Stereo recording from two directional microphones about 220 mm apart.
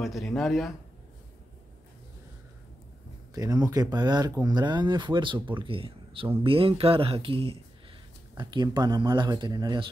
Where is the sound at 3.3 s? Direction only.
15° right (ahead or behind).